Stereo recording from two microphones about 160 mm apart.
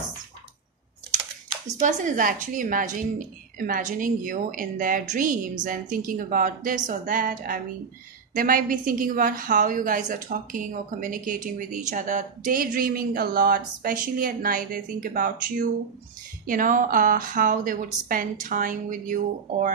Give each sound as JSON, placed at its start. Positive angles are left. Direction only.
{"t": 1.8, "sound": "a woman's voice", "side_deg": -50}